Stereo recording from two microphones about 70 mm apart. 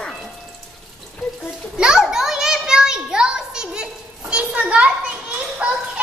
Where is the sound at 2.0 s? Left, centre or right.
Centre.